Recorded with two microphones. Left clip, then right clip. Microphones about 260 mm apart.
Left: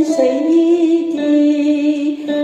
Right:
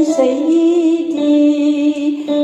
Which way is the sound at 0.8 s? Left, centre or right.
Right.